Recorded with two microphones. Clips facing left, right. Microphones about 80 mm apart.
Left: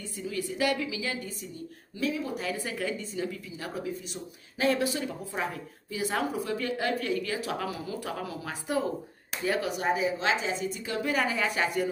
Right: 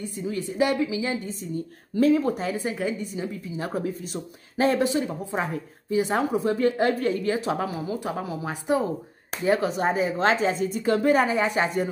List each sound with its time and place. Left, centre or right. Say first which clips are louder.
0.2 s a woman's voice: right 5 dB; right
2.0 s speech: right 11 dB; right
2.3 s a woman's voice: right 5 dB; right
11.1 s a woman's voice: right 6 dB; right